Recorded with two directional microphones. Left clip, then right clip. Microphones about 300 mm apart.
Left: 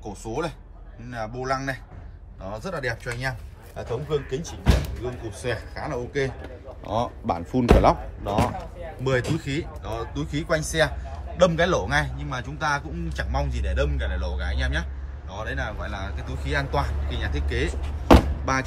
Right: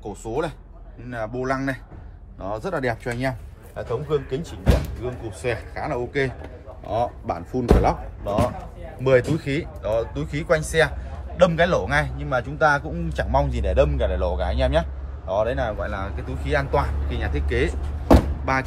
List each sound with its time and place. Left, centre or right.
0.0 s a man's voice: centre
7.2 s speech: centre
8.4 s a man's voice: centre